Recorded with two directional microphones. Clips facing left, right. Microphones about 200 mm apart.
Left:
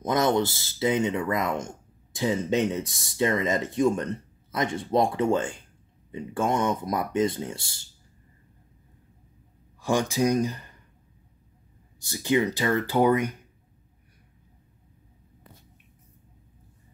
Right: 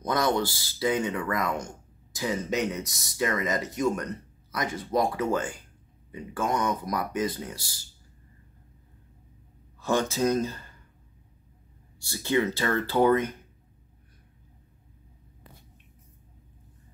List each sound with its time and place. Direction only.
0.0 s speech: 20° left (ahead or behind)
9.8 s speech: 15° left (ahead or behind)
12.0 s speech: 15° left (ahead or behind)